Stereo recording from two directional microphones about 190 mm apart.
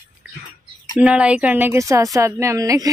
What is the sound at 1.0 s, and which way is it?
Speech, 5° right (ahead or behind).